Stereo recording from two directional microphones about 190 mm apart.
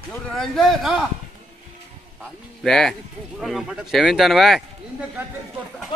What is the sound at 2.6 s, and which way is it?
Speech, centre (ahead or behind).